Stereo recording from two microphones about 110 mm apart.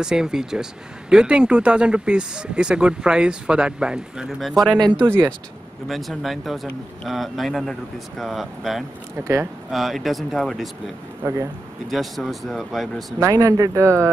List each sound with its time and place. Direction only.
0.0 s speech: 5° right (ahead or behind)
4.7 s speech: 40° right (ahead or behind)
5.0 s speech: 20° right (ahead or behind)
5.9 s speech: centre (ahead or behind)
11.2 s speech: 25° right (ahead or behind)
11.9 s speech: centre (ahead or behind)
13.2 s speech: 30° right (ahead or behind)